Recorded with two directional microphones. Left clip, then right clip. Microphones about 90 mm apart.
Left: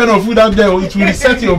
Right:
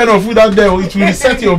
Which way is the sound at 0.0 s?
25° right (ahead or behind).